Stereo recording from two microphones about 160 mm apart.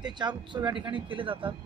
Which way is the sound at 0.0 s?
30° right (ahead or behind).